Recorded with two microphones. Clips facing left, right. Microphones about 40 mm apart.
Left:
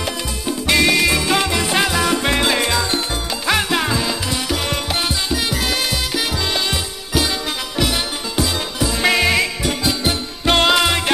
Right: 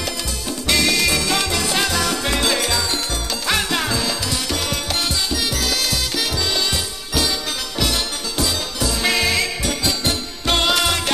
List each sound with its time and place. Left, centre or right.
0.5 s music: centre
3.4 s music: centre